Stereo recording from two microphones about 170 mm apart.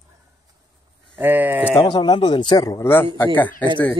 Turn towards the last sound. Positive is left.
turn(degrees=10)  # may be behind; listen again after turning